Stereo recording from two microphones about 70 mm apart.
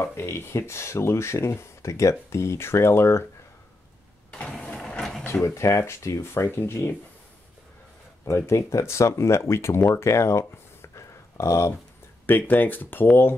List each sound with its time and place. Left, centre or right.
0.0 s speech: left
4.3 s vehicle: centre
5.2 s speech: left
8.3 s speech: left
9.9 s a sound: left
12.3 s speech: left